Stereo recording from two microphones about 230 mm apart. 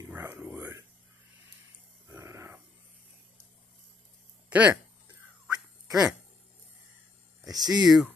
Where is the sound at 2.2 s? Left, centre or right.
Centre.